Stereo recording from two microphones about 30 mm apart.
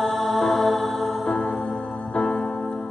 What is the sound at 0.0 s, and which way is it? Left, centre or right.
Music, centre.